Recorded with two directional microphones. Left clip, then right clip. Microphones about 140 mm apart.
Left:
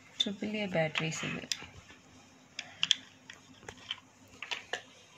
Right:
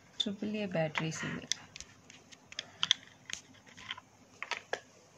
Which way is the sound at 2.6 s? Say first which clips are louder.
Left 1 dB; 25° right (ahead or behind).